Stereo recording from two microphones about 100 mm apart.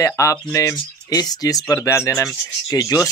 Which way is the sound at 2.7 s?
35° left (ahead or behind).